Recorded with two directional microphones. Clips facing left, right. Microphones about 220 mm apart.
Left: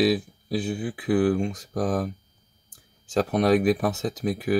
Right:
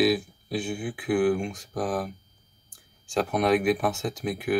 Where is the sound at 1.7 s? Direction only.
40° left (ahead or behind).